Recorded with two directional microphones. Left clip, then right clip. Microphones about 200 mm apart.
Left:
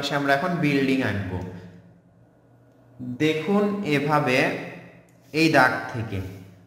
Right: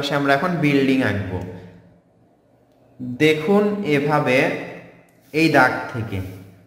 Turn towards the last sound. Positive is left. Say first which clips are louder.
# right 2 dB
turn(degrees=0)  # may be behind; listen again after turning